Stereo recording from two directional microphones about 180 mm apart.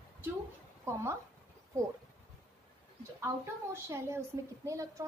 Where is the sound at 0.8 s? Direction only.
15° right (ahead or behind).